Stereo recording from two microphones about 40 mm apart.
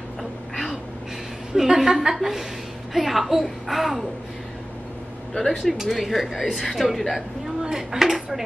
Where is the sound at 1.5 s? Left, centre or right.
Centre.